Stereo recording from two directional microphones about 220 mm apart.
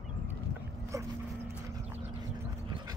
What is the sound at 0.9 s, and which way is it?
Dog, 15° right (ahead or behind).